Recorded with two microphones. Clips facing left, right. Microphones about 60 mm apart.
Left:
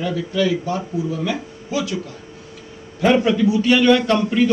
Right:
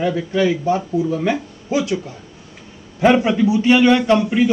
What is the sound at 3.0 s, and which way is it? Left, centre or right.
A man's voice, right.